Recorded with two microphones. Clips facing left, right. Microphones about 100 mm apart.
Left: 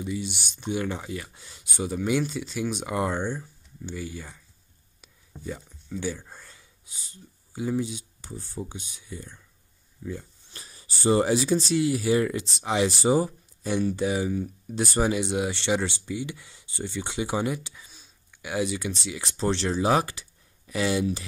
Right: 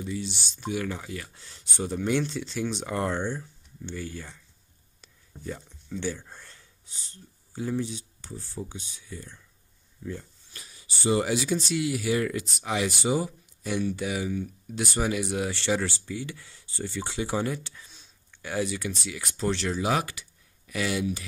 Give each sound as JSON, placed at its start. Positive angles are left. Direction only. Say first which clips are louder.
{"t": 0.0, "sound": "speech", "louder": "left 2 dB", "side_deg": 15}
{"t": 10.5, "sound": "speech", "louder": "left 1 dB", "side_deg": 35}
{"t": 13.0, "sound": "speech", "louder": "left 4 dB", "side_deg": 35}
{"t": 18.5, "sound": "speech", "louder": "left 2 dB", "side_deg": 15}